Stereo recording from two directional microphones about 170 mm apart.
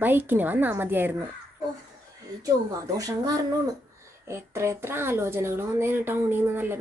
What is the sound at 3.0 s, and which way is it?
Speech, 20° right (ahead or behind).